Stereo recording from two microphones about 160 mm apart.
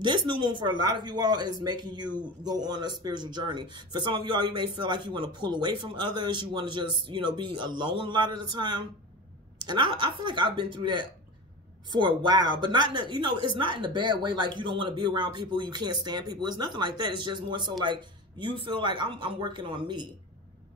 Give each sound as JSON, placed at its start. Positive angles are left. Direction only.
{"t": 0.0, "sound": "a man's voice", "side_deg": -30}